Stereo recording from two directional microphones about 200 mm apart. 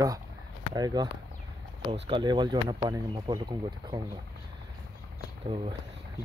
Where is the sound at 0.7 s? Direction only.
20° right (ahead or behind).